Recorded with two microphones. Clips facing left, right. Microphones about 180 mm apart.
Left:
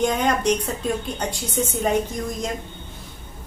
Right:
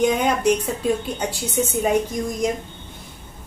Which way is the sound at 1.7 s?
10° right (ahead or behind).